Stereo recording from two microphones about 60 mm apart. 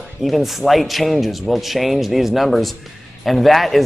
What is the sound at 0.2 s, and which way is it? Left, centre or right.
Speech, centre.